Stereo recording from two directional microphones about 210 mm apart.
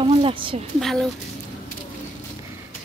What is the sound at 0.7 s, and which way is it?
Speech, centre (ahead or behind).